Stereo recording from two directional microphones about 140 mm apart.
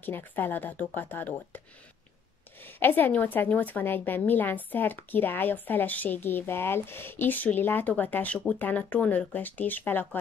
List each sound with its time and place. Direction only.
0.0 s a woman's voice: 15° left (ahead or behind)
2.6 s a woman's voice: 15° left (ahead or behind)